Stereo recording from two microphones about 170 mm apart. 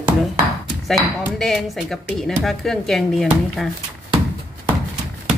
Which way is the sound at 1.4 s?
Centre (ahead or behind).